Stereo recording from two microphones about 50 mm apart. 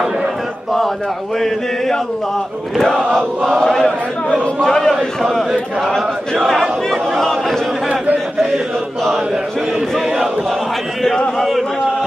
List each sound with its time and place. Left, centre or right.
3.1 s chant: centre
6.9 s a sound: centre
11.3 s a man's voice: centre